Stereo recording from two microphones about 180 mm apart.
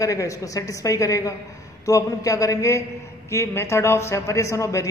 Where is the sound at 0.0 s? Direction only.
20° left (ahead or behind).